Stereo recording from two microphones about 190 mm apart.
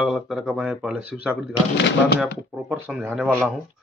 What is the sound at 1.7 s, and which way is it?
Speech, 60° left (ahead or behind).